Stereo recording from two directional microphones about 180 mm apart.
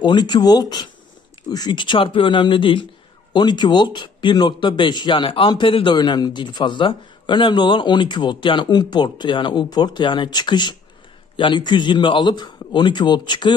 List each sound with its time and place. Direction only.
0.0 s speech: 25° left (ahead or behind)